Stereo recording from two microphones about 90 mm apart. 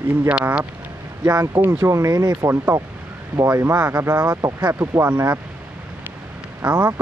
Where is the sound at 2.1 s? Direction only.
50° right (ahead or behind).